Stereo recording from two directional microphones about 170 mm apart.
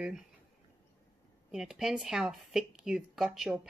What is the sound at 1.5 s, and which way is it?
A woman's voice, centre (ahead or behind).